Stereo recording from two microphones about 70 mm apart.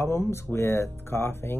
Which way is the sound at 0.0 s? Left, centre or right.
Left.